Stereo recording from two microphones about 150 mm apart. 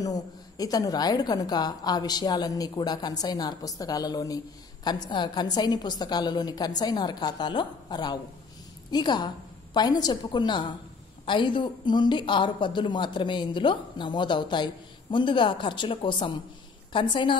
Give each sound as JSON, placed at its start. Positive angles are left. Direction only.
{"t": 0.0, "sound": "a woman's voice", "side_deg": 25}